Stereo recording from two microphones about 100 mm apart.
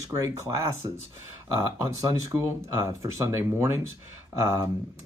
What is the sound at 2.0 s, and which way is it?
Speech, 30° right (ahead or behind).